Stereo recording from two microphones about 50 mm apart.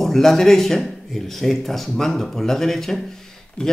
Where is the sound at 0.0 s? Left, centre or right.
Centre.